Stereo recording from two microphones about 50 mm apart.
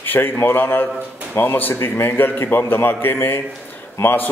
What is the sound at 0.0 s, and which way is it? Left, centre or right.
A man's voice, left.